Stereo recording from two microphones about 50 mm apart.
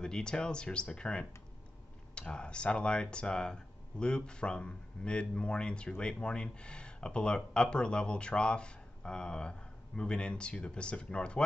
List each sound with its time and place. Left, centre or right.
0.0 s speech: centre